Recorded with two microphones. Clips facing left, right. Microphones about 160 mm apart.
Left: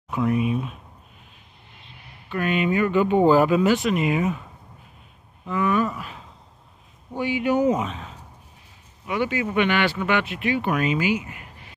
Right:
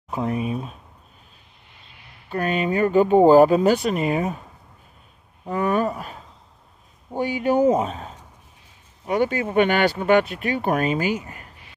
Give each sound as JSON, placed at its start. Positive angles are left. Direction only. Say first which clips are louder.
{"t": 0.1, "sound": "speech", "louder": "left 2 dB", "side_deg": -35}
{"t": 2.2, "sound": "speech", "louder": "even", "side_deg": -40}
{"t": 5.4, "sound": "speech", "louder": "right 1 dB", "side_deg": -40}